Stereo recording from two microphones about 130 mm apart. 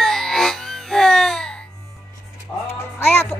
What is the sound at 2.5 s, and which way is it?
Music, 10° left (ahead or behind).